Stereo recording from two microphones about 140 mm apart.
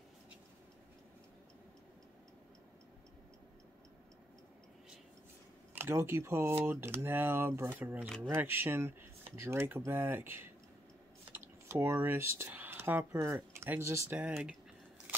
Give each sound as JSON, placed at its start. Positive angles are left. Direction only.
{"t": 5.8, "sound": "speech", "side_deg": -15}
{"t": 14.2, "sound": "speech", "side_deg": -5}